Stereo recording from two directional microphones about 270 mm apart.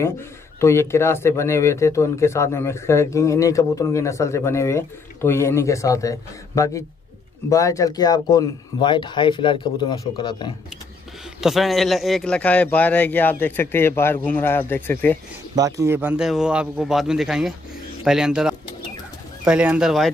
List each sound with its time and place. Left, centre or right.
0.6 s speech: centre
11.4 s speech: centre
15.5 s a man's voice: centre